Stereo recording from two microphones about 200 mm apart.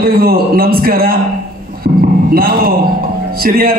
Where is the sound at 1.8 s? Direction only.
50° right (ahead or behind).